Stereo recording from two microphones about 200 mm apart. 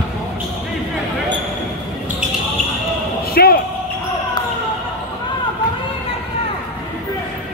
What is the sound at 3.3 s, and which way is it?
Basketball bounce, 50° left (ahead or behind).